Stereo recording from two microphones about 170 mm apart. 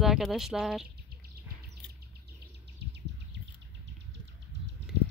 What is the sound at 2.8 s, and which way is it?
Bird, 90° right.